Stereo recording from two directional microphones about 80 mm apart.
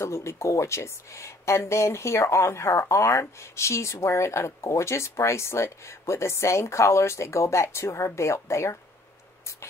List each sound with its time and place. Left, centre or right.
0.0 s speech: left